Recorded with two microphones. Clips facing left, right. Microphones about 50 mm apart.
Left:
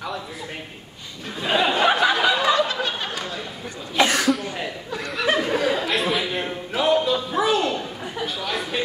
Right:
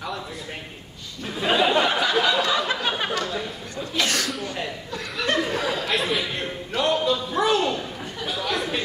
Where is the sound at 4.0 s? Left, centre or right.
Centre.